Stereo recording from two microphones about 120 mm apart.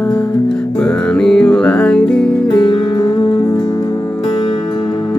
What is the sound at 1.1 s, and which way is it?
Music, 5° left (ahead or behind).